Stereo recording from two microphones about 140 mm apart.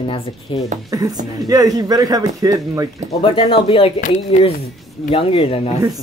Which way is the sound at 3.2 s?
45° left (ahead or behind).